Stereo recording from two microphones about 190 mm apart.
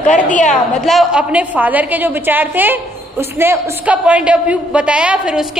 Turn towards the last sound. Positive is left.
turn(degrees=-5)  # may be behind; listen again after turning